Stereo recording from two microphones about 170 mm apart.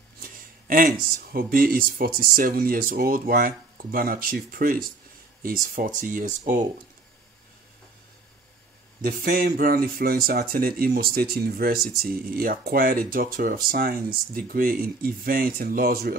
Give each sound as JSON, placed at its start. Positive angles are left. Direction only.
{"t": 0.2, "sound": "speech", "side_deg": -55}
{"t": 9.0, "sound": "speech", "side_deg": -60}